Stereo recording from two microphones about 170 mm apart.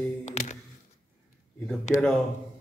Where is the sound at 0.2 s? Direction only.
45° left (ahead or behind).